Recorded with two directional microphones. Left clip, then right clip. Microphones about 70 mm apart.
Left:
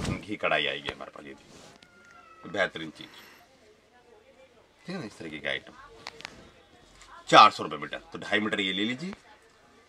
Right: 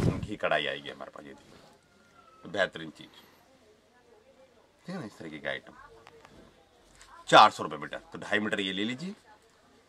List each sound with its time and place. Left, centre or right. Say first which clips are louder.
0.2 s speech: left 5 dB; right
2.6 s speech: left 1 dB; right
4.8 s speech: left 3 dB; right
7.2 s speech: left 2 dB; right
8.1 s speech: left 2 dB; right